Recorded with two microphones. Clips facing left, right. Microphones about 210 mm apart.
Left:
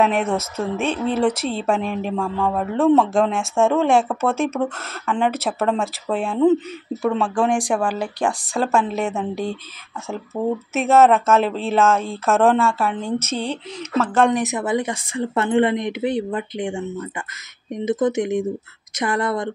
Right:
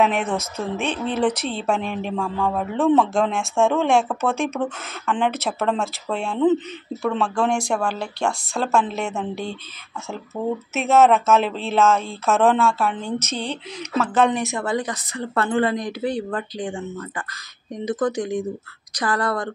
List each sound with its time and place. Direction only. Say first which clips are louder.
0.0 s speech: left 2 dB; centre (ahead or behind)
10.3 s speech: left 3 dB; 15° left (ahead or behind)
10.9 s speech: left 1 dB; centre (ahead or behind)
14.3 s a woman's voice: left 3 dB; 20° left (ahead or behind)
17.8 s a woman's voice: left 3 dB; 25° left (ahead or behind)